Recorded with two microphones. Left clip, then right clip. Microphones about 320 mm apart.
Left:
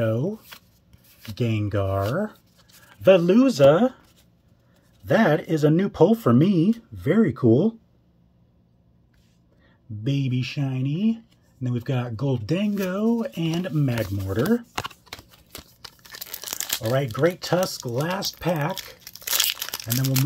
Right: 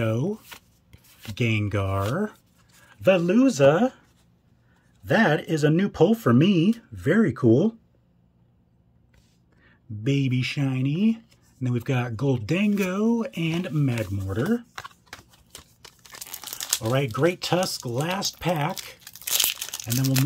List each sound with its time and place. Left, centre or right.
0.0 s shuffling cards: centre
1.3 s speech: centre
5.0 s speech: centre
10.0 s speech: centre
15.1 s a sound: left
15.8 s tearing: centre
17.0 s speech: centre
19.5 s crumpling: centre